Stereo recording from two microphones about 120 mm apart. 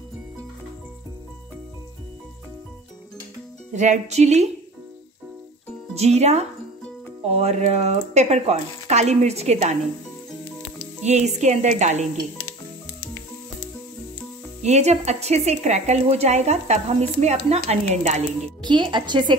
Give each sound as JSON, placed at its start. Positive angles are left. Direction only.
{"t": 3.7, "sound": "speech", "side_deg": -90}
{"t": 5.9, "sound": "speech", "side_deg": -65}
{"t": 11.1, "sound": "speech", "side_deg": -70}
{"t": 14.6, "sound": "speech", "side_deg": -70}
{"t": 18.6, "sound": "speech", "side_deg": -40}